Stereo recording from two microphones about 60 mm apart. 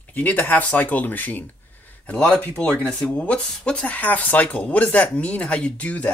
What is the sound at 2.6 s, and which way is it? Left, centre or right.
Speech, left.